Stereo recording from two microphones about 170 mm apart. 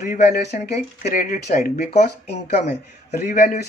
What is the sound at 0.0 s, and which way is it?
Speech, 45° left (ahead or behind).